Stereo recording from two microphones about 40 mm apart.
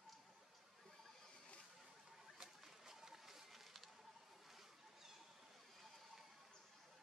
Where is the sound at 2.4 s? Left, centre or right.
Centre.